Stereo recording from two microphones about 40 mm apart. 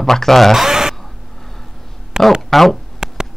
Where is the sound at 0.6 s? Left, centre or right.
Centre.